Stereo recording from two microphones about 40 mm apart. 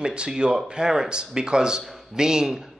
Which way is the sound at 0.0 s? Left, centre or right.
Right.